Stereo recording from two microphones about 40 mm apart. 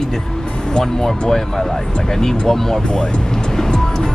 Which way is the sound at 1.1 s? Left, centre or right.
Centre.